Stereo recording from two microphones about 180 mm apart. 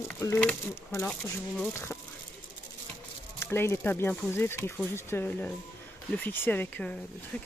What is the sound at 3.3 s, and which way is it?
Speech, 15° left (ahead or behind).